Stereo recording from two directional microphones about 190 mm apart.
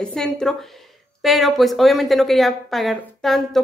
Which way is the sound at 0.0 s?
5° left (ahead or behind).